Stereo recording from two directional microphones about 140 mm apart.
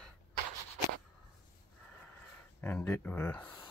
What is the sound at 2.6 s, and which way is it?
Speech, 10° left (ahead or behind).